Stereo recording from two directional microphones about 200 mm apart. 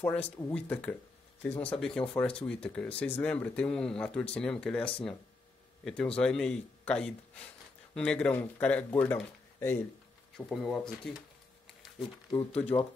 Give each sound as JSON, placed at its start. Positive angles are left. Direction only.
{"t": 0.0, "sound": "speech", "side_deg": 10}
{"t": 12.5, "sound": "speech", "side_deg": 30}